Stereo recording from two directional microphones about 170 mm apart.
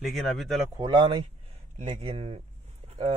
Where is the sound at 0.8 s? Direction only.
25° right (ahead or behind).